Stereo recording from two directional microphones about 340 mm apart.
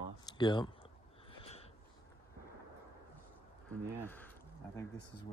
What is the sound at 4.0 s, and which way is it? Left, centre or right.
Speech, centre.